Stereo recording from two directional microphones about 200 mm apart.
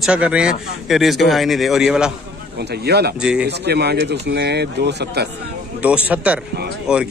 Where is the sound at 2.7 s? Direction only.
55° right (ahead or behind).